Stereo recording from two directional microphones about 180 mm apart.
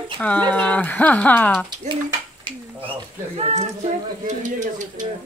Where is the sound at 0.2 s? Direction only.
10° left (ahead or behind).